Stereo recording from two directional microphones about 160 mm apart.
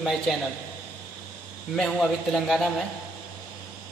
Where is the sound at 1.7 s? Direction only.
5° left (ahead or behind).